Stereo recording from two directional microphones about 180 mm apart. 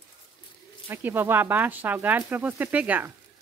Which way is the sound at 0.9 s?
10° right (ahead or behind).